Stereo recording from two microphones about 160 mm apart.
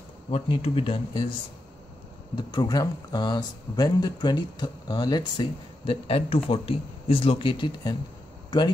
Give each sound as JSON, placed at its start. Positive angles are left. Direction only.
{"t": 0.3, "sound": "speech", "side_deg": 35}
{"t": 2.3, "sound": "speech", "side_deg": 25}
{"t": 6.0, "sound": "speech", "side_deg": 40}